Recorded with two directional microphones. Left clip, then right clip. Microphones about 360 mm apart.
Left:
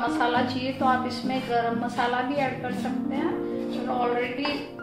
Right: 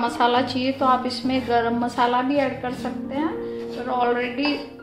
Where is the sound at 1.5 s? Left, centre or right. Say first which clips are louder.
Right 4 dB; right.